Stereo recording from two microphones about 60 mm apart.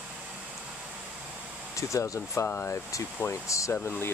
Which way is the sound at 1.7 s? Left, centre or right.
Left.